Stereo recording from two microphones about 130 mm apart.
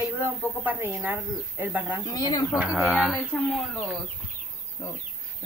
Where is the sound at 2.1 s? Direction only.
30° left (ahead or behind).